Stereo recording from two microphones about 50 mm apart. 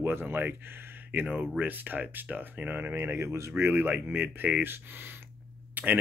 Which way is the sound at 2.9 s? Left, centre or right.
Right.